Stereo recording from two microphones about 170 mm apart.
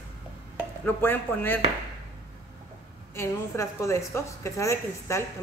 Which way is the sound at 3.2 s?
15° left (ahead or behind).